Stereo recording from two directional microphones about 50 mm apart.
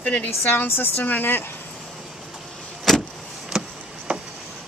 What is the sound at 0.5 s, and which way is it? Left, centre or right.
Speech, left.